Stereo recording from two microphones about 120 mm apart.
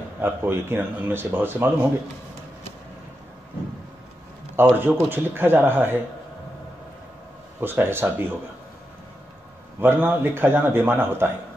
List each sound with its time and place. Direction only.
0.2 s speech: 20° right (ahead or behind)
4.6 s speech: 15° right (ahead or behind)
7.6 s speech: 20° right (ahead or behind)
9.8 s speech: 15° right (ahead or behind)